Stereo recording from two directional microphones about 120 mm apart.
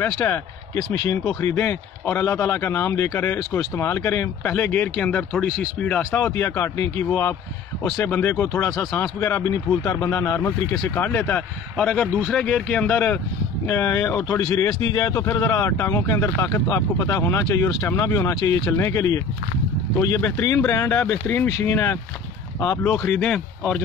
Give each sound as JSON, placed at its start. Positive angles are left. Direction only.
{"t": 0.0, "sound": "speech", "side_deg": 20}
{"t": 14.0, "sound": "speech", "side_deg": 10}
{"t": 14.8, "sound": "speech", "side_deg": 30}